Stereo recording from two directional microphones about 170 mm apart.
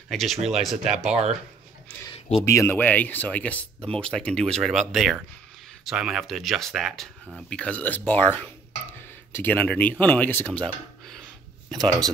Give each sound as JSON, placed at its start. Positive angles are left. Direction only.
{"t": 0.1, "sound": "speech", "side_deg": 0}
{"t": 2.1, "sound": "a sound", "side_deg": 40}
{"t": 2.4, "sound": "speech", "side_deg": 15}